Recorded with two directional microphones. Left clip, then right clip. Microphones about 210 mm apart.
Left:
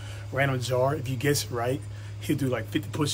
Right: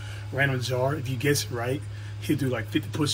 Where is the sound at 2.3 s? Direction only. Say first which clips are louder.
Right 1 dB; centre (ahead or behind).